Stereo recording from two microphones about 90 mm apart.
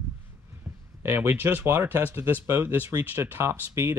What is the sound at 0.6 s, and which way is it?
Speech, 25° right (ahead or behind).